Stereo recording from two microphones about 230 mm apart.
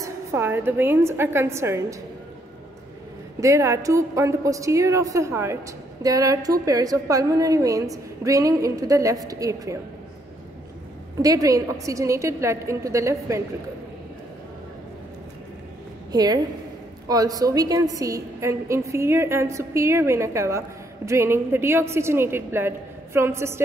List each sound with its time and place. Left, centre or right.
0.0 s a woman's voice: centre
3.3 s a woman's voice: centre
11.1 s a woman's voice: centre
16.1 s a woman's voice: centre